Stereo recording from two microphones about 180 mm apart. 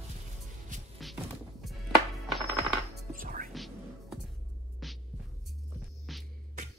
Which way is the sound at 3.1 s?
50° right (ahead or behind).